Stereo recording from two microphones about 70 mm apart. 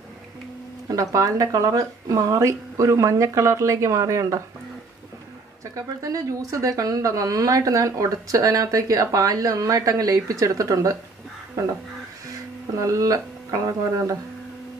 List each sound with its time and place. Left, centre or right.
0.8 s speech: right
5.8 s speech: right
12.7 s speech: right